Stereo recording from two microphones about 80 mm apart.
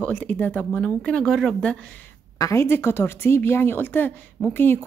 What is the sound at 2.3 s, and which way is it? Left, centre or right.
Speech, left.